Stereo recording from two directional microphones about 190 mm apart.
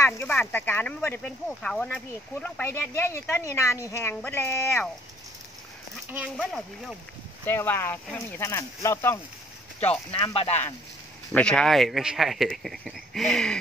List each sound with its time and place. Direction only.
0.0 s speech: 10° left (ahead or behind)
6.1 s speech: centre (ahead or behind); by 9.2 s 15° left (ahead or behind)
10.1 s speech: 25° left (ahead or behind)
11.3 s speech: 5° left (ahead or behind)